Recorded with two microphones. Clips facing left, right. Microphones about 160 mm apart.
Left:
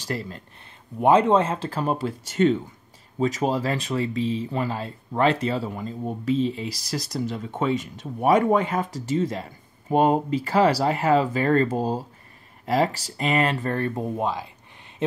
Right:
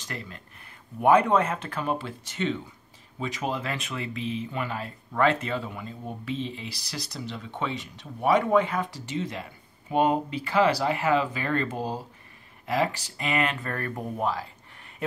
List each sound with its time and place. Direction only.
0.0 s speech: 35° left (ahead or behind)
0.9 s speech: 25° left (ahead or behind)